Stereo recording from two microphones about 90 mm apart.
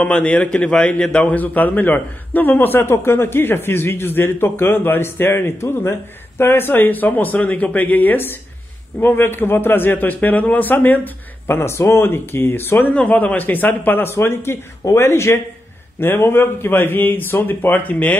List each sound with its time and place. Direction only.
0.0 s a man's voice: 15° left (ahead or behind)